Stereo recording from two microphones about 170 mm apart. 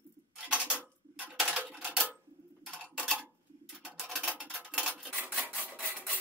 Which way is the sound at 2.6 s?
5° right (ahead or behind).